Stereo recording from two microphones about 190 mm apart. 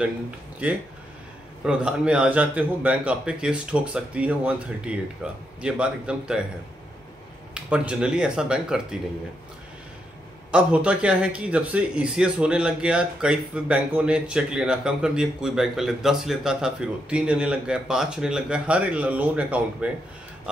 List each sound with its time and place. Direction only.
1.6 s a man's voice: 5° right (ahead or behind)
7.5 s a man's voice: 5° right (ahead or behind)
10.5 s a man's voice: 5° right (ahead or behind)